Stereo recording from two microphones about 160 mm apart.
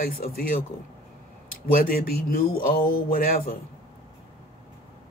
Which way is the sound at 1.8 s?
65° left (ahead or behind).